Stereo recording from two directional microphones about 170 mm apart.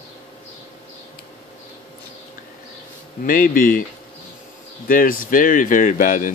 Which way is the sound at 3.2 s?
55° left (ahead or behind).